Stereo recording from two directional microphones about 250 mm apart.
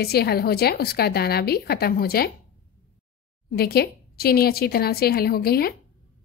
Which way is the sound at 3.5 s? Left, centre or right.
Left.